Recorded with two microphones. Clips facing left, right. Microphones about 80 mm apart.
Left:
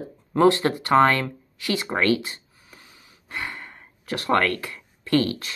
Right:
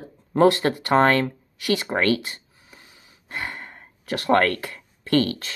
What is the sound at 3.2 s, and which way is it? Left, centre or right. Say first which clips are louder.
Gasp: right 1 dB; right.